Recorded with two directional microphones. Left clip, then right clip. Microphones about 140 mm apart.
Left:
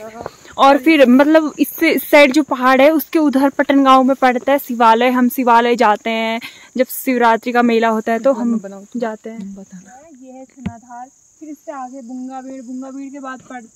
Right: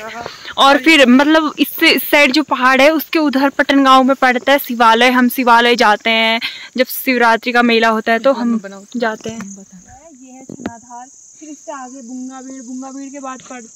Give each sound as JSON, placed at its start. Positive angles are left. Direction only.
{"t": 0.0, "sound": "speech", "side_deg": 5}
{"t": 3.0, "sound": "speech", "side_deg": 25}
{"t": 8.6, "sound": "cricket", "side_deg": 55}
{"t": 12.4, "sound": "cricket", "side_deg": 30}